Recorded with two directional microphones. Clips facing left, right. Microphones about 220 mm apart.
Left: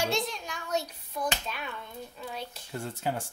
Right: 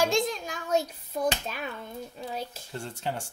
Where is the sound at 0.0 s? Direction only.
90° right.